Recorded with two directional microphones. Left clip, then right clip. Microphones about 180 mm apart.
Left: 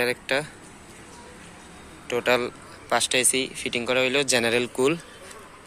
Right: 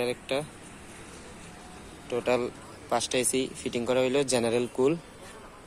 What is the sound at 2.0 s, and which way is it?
Speech, 5° left (ahead or behind).